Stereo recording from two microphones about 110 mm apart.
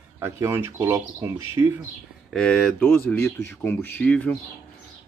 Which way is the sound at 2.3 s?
5° left (ahead or behind).